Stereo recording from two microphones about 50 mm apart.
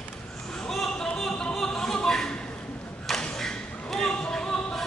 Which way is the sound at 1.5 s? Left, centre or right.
Centre.